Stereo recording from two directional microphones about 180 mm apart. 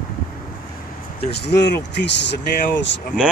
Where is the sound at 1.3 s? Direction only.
65° left (ahead or behind).